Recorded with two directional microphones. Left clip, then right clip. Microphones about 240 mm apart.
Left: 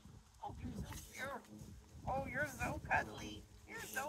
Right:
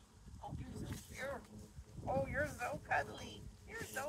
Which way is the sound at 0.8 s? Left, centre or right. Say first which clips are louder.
Right 2 dB; centre.